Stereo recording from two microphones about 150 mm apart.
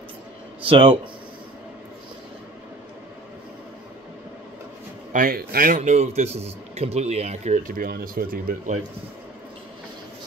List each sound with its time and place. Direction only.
0.7 s speech: 35° right (ahead or behind)
5.1 s a man's voice: 75° right (ahead or behind); by 7.6 s 45° right (ahead or behind)
7.6 s speech: 70° right (ahead or behind)